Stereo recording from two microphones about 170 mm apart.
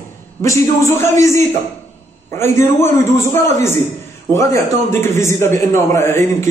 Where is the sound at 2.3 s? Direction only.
15° left (ahead or behind).